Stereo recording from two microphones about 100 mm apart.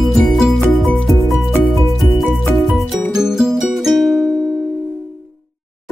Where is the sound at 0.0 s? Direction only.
Centre (ahead or behind).